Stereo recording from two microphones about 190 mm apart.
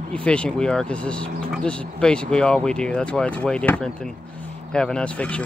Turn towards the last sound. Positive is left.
turn(degrees=5)  # may be behind; listen again after turning